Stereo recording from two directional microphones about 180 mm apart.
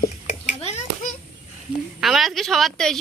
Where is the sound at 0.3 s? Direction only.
35° left (ahead or behind).